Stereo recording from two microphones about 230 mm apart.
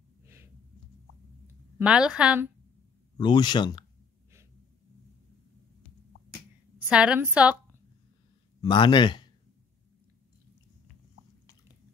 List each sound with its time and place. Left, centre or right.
1.8 s a woman's voice: centre
3.2 s speech: centre
6.8 s a woman's voice: centre
8.5 s speech: centre